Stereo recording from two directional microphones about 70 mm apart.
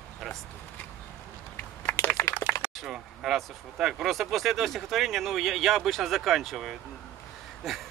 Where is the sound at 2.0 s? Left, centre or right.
Left.